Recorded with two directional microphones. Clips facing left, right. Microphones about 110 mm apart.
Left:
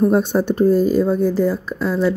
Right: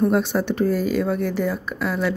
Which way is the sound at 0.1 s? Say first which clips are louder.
Left 4 dB; 40° left (ahead or behind).